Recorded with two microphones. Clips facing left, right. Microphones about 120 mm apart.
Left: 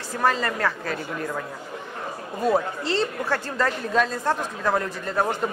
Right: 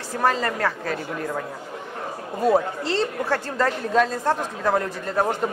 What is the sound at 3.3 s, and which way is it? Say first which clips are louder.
A woman's voice: right 2 dB; 35° right (ahead or behind).